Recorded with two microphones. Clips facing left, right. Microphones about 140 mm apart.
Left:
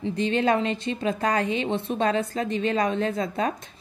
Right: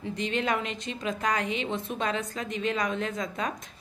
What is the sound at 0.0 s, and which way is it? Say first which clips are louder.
A woman's voice: left 6 dB; 30° left (ahead or behind).